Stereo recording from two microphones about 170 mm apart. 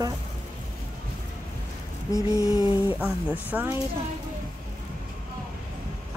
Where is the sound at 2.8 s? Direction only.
10° right (ahead or behind).